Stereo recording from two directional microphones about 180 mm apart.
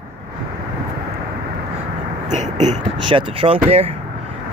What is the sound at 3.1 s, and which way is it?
Speech, 30° right (ahead or behind).